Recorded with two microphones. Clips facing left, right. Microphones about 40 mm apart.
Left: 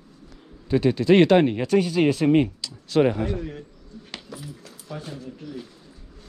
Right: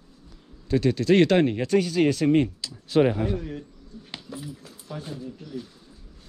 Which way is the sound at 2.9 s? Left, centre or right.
Centre.